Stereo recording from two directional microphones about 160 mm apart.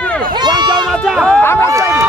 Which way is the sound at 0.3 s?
25° right (ahead or behind).